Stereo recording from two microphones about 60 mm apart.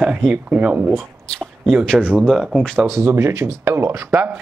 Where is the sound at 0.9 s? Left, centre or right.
Centre.